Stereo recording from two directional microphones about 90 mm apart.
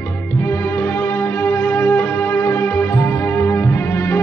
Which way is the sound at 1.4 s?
25° left (ahead or behind).